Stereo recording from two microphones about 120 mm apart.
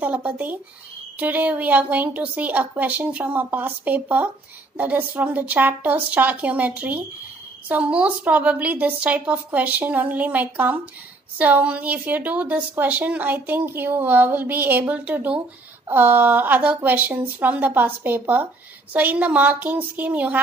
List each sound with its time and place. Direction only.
0.0 s a woman's voice: 15° right (ahead or behind)